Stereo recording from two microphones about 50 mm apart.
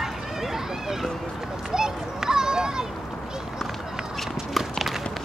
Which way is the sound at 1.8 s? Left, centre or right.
Centre.